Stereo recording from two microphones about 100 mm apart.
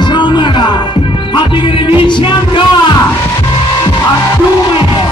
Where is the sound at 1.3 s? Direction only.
55° left (ahead or behind).